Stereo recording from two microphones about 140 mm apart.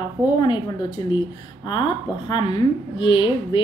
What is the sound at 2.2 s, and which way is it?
A woman's voice, 35° left (ahead or behind).